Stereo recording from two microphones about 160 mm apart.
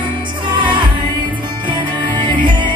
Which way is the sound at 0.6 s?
30° right (ahead or behind).